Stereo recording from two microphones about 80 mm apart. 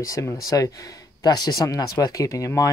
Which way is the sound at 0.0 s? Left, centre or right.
Left.